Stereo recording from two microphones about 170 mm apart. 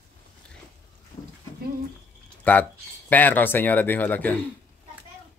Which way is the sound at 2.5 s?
10° left (ahead or behind).